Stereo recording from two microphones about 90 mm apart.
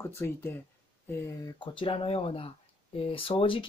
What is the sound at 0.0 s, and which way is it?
Speech, 25° left (ahead or behind).